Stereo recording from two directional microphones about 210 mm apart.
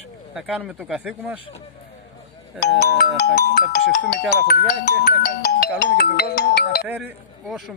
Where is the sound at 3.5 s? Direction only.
45° left (ahead or behind).